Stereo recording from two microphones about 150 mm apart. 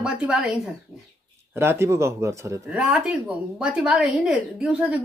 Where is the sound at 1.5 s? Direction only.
15° right (ahead or behind).